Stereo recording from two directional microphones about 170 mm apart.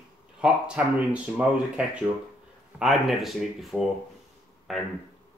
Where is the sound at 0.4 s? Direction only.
5° right (ahead or behind).